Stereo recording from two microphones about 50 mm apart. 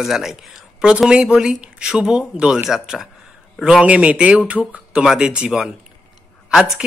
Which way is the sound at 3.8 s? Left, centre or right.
Right.